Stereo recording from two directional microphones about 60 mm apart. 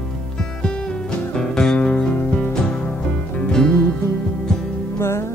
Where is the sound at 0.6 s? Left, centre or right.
Centre.